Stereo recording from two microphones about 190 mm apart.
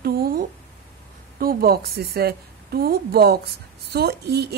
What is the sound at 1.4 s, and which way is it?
A woman's voice, 50° right (ahead or behind).